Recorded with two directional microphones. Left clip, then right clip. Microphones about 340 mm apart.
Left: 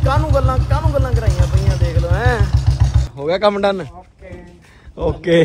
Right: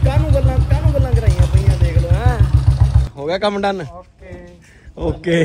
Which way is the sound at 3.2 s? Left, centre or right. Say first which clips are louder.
Left 3 dB; centre.